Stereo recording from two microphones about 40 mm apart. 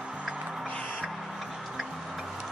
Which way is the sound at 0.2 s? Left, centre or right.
Centre.